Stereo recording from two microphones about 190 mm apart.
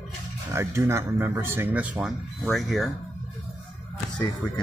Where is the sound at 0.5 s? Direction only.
15° right (ahead or behind).